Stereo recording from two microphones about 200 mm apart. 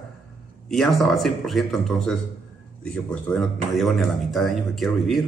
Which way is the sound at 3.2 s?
Centre (ahead or behind).